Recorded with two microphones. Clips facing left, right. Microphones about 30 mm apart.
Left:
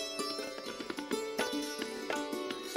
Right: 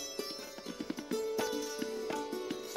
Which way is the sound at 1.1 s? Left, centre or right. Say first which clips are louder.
Right 1 dB; left.